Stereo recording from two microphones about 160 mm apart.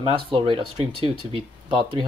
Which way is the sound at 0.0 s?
35° right (ahead or behind).